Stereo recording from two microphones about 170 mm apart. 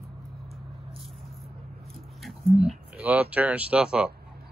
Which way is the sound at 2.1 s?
Centre (ahead or behind).